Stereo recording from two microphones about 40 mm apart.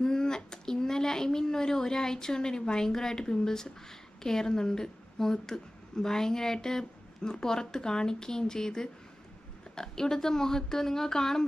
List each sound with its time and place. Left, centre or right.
0.0 s a woman's voice: centre